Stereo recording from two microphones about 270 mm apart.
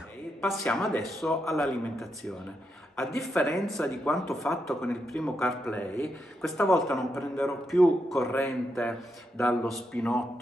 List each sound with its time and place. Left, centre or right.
0.4 s speech: centre